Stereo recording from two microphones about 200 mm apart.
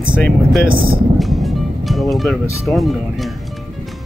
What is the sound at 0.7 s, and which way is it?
Speech, 25° right (ahead or behind).